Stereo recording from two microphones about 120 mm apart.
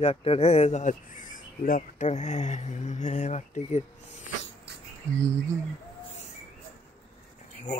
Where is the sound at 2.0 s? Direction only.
70° left (ahead or behind).